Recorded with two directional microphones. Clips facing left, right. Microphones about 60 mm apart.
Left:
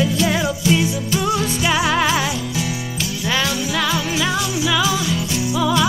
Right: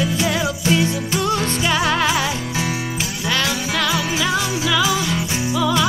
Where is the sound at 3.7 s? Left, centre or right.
Centre.